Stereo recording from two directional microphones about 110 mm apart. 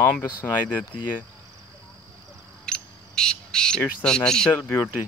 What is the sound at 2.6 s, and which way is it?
Bird, 5° left (ahead or behind).